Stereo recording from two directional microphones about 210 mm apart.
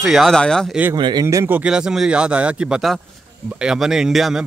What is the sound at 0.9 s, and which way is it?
Speech, 20° right (ahead or behind).